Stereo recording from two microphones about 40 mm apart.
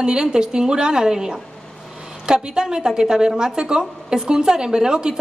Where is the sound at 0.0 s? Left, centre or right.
Centre.